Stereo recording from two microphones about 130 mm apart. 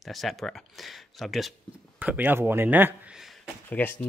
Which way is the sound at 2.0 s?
15° right (ahead or behind).